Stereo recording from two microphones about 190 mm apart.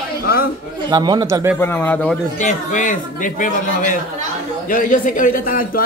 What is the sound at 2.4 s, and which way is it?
Speech, 40° left (ahead or behind).